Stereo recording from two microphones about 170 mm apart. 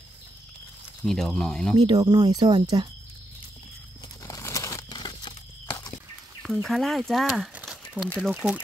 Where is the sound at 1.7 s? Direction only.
25° right (ahead or behind).